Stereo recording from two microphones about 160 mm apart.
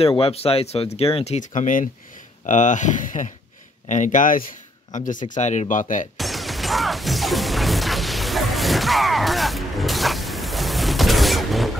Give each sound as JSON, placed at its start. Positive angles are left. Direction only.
{"t": 0.0, "sound": "speech", "side_deg": 35}
{"t": 6.1, "sound": "music", "side_deg": 0}